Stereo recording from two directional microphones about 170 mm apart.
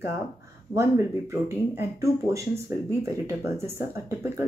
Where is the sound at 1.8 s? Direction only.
15° right (ahead or behind).